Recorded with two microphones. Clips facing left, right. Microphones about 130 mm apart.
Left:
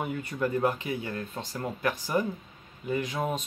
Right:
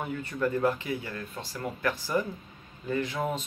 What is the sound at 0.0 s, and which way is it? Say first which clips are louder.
Speech: even; 15° left (ahead or behind).